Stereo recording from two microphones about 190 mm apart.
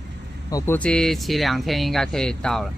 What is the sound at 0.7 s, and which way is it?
Speech, 5° left (ahead or behind).